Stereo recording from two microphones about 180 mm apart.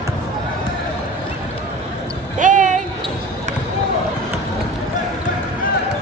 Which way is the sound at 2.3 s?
45° right (ahead or behind).